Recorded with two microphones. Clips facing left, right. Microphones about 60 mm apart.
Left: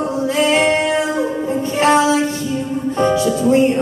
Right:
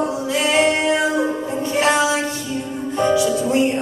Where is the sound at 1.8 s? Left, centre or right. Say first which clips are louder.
Left 4 dB; left.